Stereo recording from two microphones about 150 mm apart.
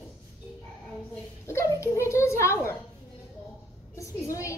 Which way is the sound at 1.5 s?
20° left (ahead or behind).